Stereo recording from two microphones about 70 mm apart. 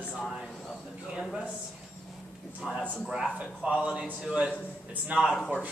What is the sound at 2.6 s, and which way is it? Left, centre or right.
Speech, centre.